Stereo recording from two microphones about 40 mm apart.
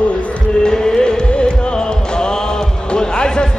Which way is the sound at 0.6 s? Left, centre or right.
Centre.